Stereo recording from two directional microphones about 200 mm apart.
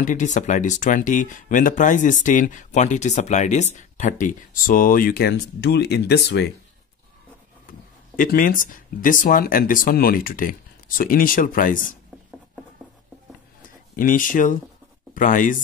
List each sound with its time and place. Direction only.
0.0 s speech: 40° left (ahead or behind); by 6.5 s 55° left (ahead or behind)
8.2 s speech: 45° left (ahead or behind)
13.6 s a sound: 45° left (ahead or behind)
15.1 s speech: 40° left (ahead or behind)